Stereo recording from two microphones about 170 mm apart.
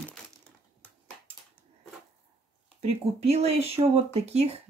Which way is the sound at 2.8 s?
40° right (ahead or behind).